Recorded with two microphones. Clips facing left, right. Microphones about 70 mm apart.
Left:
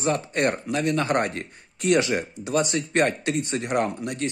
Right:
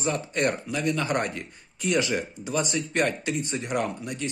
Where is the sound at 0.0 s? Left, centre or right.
Left.